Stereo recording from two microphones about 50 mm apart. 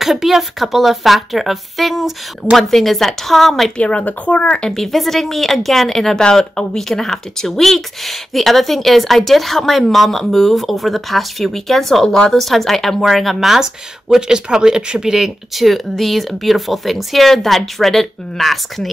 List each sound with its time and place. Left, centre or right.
0.0 s speech: centre
3.7 s speech: left
4.6 s speech: centre